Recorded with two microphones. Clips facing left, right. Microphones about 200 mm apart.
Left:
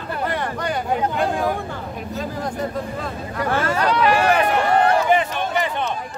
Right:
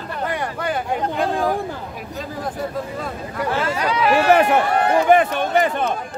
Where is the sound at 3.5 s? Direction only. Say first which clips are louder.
Left 1 dB; 50° left (ahead or behind).